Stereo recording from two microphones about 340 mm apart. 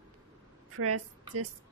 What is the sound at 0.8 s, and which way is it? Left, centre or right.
Speech, right.